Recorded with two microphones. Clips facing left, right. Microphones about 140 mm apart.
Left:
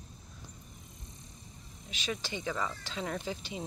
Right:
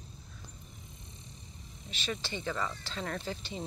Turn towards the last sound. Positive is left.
turn(degrees=10)  # may be behind; listen again after turning